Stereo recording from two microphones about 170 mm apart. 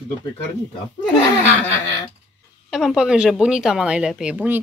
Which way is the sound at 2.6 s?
5° right (ahead or behind).